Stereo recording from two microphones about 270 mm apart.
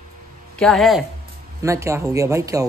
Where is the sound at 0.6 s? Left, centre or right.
Centre.